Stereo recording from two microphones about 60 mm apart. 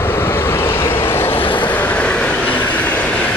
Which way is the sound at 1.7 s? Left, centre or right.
Left.